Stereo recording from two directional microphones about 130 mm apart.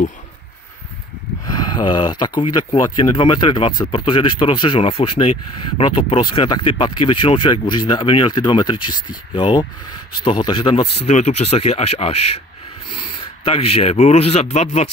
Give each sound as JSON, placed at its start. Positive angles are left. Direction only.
{"t": 1.4, "sound": "speech", "side_deg": 35}
{"t": 11.1, "sound": "speech", "side_deg": 60}
{"t": 13.4, "sound": "a man's voice", "side_deg": 45}